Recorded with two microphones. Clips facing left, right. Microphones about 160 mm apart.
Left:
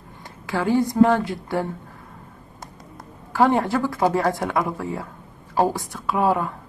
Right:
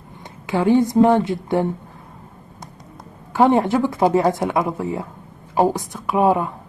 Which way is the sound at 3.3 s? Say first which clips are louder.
Right 3 dB; 20° right (ahead or behind).